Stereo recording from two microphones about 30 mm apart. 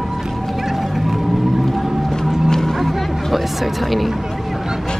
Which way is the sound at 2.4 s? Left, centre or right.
Centre.